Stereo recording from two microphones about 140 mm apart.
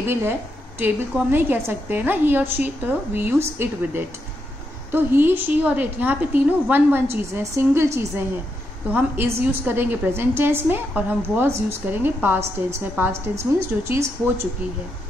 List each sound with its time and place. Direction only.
0.0 s a woman's voice: 15° right (ahead or behind)